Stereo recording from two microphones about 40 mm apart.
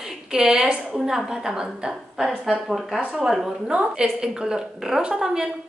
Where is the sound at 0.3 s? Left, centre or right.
Centre.